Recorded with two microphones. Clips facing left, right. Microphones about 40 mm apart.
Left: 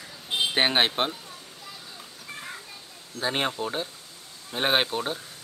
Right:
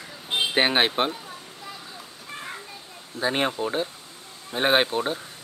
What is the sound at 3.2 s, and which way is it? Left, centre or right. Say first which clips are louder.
Speech: right 3 dB; centre.